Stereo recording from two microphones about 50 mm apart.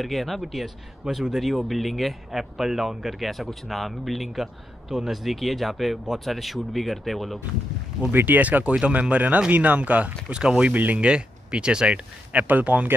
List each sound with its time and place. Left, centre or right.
0.0 s speech: centre
8.1 s speech: right
8.7 s speech: right
10.3 s speech: centre
12.3 s speech: right